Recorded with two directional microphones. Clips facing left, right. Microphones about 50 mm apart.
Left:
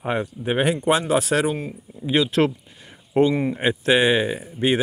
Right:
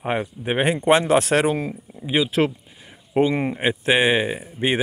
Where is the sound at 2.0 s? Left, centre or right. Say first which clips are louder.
Left 1 dB; centre.